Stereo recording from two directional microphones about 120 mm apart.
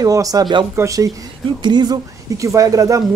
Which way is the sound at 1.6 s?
40° right (ahead or behind).